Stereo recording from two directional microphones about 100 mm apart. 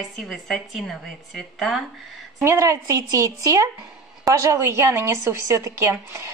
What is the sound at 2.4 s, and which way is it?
A woman's voice, 25° right (ahead or behind).